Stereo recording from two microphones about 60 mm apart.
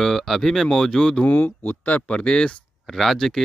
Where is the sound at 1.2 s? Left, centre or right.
Left; by 2.5 s centre.